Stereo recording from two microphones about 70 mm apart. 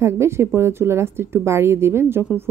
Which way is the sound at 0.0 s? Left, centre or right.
Right.